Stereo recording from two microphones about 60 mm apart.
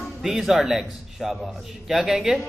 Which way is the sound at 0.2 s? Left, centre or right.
Centre.